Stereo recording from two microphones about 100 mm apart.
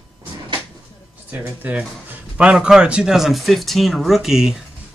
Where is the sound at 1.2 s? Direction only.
15° right (ahead or behind).